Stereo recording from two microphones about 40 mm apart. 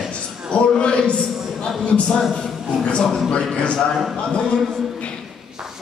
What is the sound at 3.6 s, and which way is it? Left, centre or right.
Speech, left.